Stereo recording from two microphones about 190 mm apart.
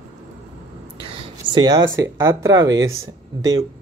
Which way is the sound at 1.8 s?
80° right.